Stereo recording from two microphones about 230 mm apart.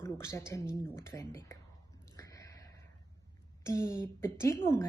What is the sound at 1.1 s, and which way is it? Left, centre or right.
Speech, centre.